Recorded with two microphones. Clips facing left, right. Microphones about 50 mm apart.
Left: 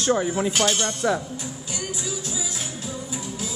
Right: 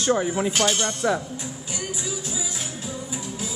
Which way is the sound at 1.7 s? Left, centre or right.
Centre.